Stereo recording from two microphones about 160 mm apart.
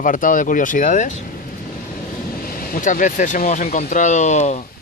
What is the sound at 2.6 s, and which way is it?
Speech, 60° left (ahead or behind).